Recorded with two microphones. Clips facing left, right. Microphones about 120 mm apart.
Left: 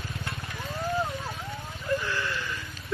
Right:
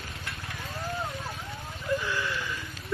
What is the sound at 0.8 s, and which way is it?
Vehicle, 25° left (ahead or behind).